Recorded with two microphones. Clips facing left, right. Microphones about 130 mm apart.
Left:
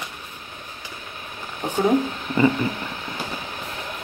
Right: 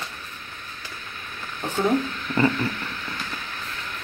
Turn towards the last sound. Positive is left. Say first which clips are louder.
# left 3 dB
turn(degrees=20)  # may be behind; listen again after turning